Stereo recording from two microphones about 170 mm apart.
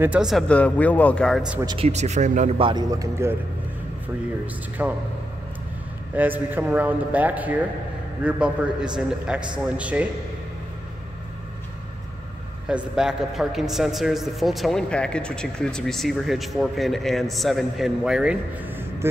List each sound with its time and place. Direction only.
0.0 s a man's voice: 5° right (ahead or behind)
1.8 s speech: 40° right (ahead or behind)
2.6 s a man's voice: 25° right (ahead or behind)
4.8 s a man's voice: 10° right (ahead or behind)
6.1 s a man's voice: 10° right (ahead or behind)
12.6 s a man's voice: 5° right (ahead or behind)